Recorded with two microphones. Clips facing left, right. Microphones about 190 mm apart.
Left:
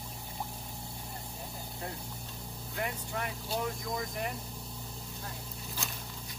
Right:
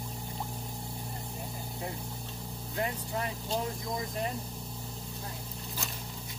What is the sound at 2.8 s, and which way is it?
Vehicle, 30° right (ahead or behind).